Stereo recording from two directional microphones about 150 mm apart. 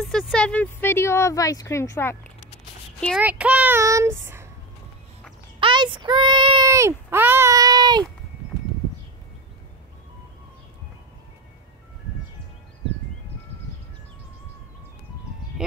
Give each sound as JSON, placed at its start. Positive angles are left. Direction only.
{"t": 0.0, "sound": "speech", "side_deg": 5}
{"t": 3.2, "sound": "speech", "side_deg": -10}
{"t": 5.6, "sound": "speech", "side_deg": -35}
{"t": 6.7, "sound": "a sound", "side_deg": -20}